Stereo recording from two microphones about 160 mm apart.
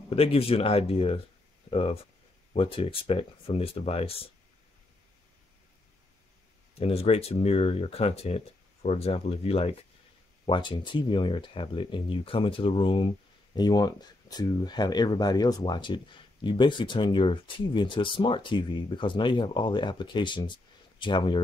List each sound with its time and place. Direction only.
0.1 s speech: 35° left (ahead or behind)
6.7 s speech: 40° left (ahead or behind)
10.4 s speech: 30° left (ahead or behind)